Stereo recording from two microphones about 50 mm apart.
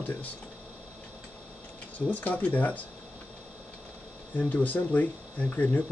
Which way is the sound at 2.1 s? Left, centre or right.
Left.